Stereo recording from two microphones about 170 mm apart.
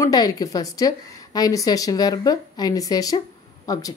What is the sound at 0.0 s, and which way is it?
A woman's voice, 20° left (ahead or behind).